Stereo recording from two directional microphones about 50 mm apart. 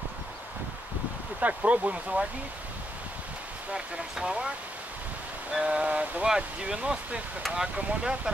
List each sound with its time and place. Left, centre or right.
1.4 s speech: right
3.7 s speech: centre
5.5 s speech: right